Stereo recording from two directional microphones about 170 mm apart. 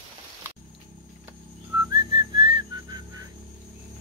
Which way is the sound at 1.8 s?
25° right (ahead or behind).